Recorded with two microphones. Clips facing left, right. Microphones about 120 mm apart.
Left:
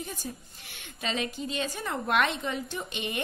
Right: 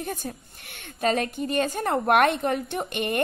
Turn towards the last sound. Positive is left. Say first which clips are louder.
# right 7 dB
turn(degrees=-55)  # may be behind; listen again after turning